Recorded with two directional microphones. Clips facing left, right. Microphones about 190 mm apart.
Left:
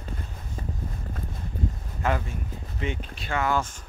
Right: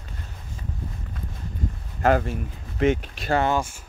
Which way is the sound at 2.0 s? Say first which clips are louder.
Right 7 dB; 50° right (ahead or behind).